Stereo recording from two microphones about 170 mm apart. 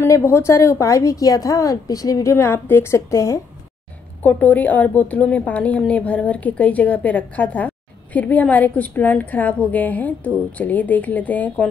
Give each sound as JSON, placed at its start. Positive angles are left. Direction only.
{"t": 0.0, "sound": "a woman's voice", "side_deg": 15}